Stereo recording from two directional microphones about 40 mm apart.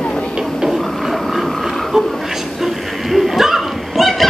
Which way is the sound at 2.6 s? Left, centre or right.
Centre.